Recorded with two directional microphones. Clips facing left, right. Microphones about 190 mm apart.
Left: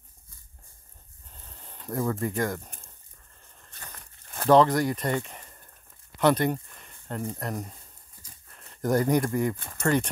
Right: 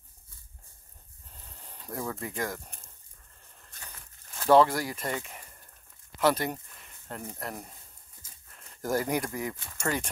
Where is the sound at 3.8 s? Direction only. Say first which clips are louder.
Left 3 dB; 55° left (ahead or behind).